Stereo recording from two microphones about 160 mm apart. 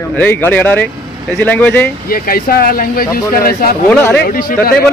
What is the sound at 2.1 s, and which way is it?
Speech, 65° left (ahead or behind).